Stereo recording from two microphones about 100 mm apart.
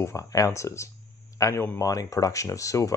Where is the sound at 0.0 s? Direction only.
35° left (ahead or behind).